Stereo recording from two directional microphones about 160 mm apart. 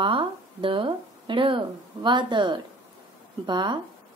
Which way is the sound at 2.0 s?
30° right (ahead or behind).